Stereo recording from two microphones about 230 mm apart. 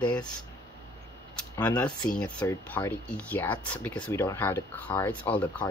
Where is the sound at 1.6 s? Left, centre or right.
Centre.